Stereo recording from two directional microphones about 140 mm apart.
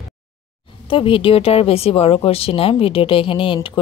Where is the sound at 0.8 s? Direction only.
40° left (ahead or behind).